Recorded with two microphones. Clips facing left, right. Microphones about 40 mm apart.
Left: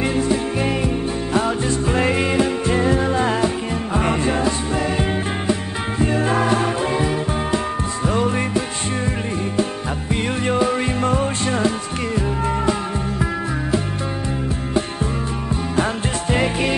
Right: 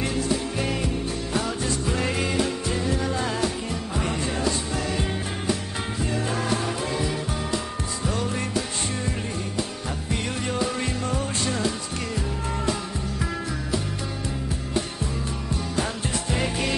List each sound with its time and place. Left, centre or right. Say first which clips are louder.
0.0 s music: left 6 dB; left
10.4 s music: left 9 dB; left
15.7 s music: left 7 dB; left